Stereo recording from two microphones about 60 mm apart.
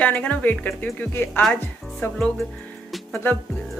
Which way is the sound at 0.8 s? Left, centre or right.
Left.